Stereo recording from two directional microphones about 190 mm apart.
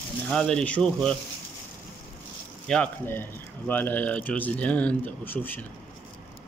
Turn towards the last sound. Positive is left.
turn(degrees=10)  # may be behind; listen again after turning